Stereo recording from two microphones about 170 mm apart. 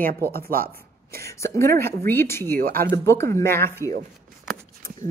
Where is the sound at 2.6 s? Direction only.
60° right (ahead or behind).